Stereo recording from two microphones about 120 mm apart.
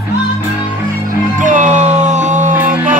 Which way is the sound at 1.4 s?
90° right.